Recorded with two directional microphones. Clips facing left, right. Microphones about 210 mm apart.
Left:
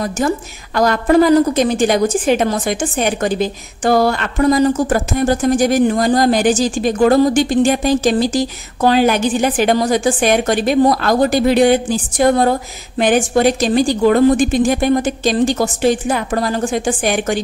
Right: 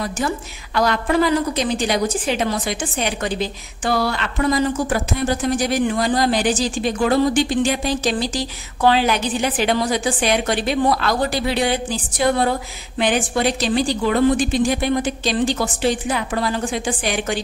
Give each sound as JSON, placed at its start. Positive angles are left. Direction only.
{"t": 0.7, "sound": "a woman's voice", "side_deg": 45}